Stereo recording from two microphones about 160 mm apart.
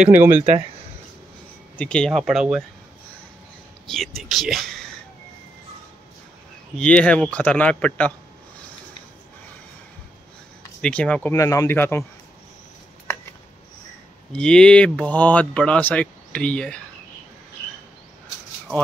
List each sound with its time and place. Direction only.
0.3 s speech: 45° right (ahead or behind)
1.8 s speech: 5° left (ahead or behind)
3.9 s speech: centre (ahead or behind)
6.8 s speech: 5° left (ahead or behind)
10.8 s speech: 5° left (ahead or behind)
11.3 s speech: 20° left (ahead or behind)
13.0 s a sound: 15° left (ahead or behind)
14.3 s speech: 5° left (ahead or behind)